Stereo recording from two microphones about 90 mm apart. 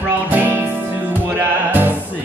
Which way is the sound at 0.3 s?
20° right (ahead or behind).